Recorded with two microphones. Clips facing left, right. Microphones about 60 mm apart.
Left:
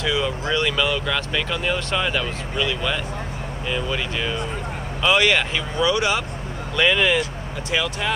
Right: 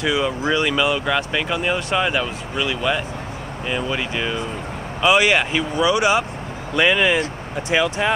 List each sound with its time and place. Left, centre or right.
0.0 s speech: centre